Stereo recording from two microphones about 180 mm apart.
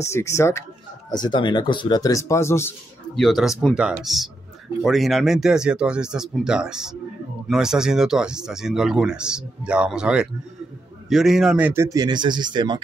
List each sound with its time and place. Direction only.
0.1 s speech: 15° left (ahead or behind)
3.2 s a man's voice: centre (ahead or behind); by 12.8 s 25° right (ahead or behind)